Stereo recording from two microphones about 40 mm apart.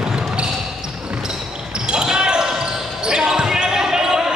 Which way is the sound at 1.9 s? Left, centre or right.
Centre.